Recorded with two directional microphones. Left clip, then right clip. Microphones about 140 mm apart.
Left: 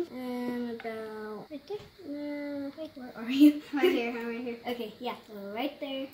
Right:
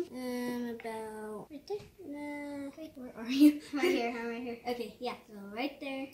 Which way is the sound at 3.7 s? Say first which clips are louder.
Left 4 dB; 25° right (ahead or behind).